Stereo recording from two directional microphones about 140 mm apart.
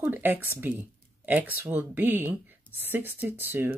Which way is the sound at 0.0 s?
15° right (ahead or behind).